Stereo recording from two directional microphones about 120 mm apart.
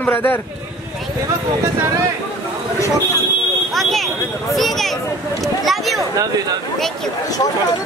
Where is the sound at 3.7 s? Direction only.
Centre (ahead or behind).